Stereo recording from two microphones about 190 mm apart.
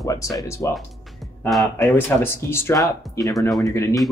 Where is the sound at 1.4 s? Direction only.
Centre (ahead or behind).